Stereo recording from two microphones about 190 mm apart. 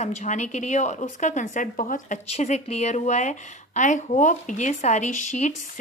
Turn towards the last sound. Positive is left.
turn(degrees=40)  # may be behind; listen again after turning